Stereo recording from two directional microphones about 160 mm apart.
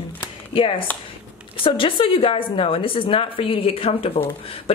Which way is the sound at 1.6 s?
35° left (ahead or behind).